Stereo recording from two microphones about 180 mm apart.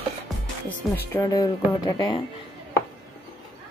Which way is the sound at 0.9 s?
15° left (ahead or behind).